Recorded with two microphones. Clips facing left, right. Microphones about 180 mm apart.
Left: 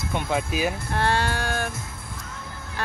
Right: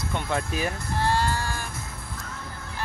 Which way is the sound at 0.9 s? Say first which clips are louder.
Right 2 dB; 65° left (ahead or behind).